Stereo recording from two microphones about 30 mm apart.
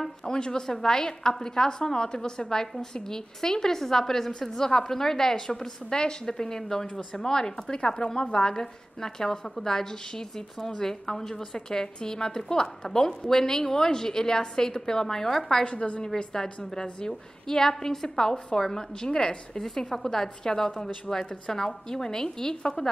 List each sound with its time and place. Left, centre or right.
0.3 s a woman's voice: left
15.6 s a woman's voice: left
16.3 s a woman's voice: centre